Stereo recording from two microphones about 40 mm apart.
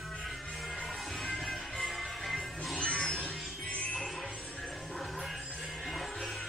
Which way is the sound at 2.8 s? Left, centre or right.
Left.